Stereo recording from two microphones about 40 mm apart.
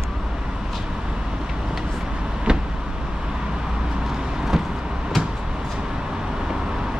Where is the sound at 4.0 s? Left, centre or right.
Centre.